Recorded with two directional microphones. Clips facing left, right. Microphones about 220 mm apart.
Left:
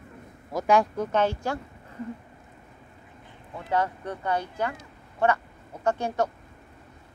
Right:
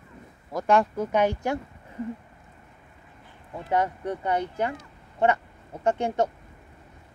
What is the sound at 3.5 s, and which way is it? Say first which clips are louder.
Speech: right 1 dB; 20° right (ahead or behind).